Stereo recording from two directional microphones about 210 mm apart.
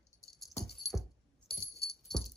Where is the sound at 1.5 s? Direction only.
50° left (ahead or behind).